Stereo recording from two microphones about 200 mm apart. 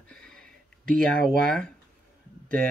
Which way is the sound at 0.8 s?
45° right (ahead or behind).